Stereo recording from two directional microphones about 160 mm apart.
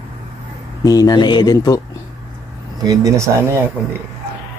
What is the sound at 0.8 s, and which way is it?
Speech, 25° left (ahead or behind).